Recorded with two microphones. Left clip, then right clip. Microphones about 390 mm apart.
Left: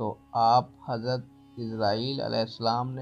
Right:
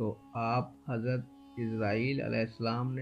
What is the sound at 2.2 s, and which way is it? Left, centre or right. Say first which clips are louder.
Speech: left 5 dB; left.